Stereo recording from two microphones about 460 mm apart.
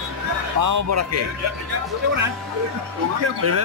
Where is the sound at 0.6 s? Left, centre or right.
Right.